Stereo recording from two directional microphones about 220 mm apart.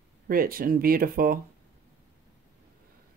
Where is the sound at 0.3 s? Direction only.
40° right (ahead or behind).